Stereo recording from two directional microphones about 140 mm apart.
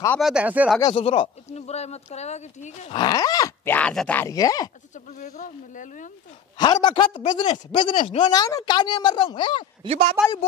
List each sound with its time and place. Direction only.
0.2 s speech: 5° right (ahead or behind)
0.9 s speech: 40° left (ahead or behind)
2.9 s groan: 30° left (ahead or behind)
3.7 s speech: 5° left (ahead or behind)
4.2 s groan: 25° left (ahead or behind)
5.2 s speech: 65° left (ahead or behind)
6.6 s speech: 30° left (ahead or behind)
9.8 s speech: 50° right (ahead or behind)